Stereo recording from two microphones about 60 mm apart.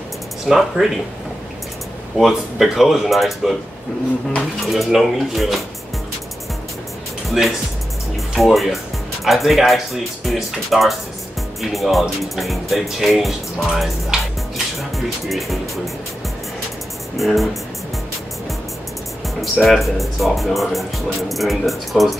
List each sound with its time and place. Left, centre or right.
0.5 s speech: centre
2.1 s speech: centre
4.6 s speech: centre
7.2 s speech: centre
17.2 s speech: centre
19.4 s speech: centre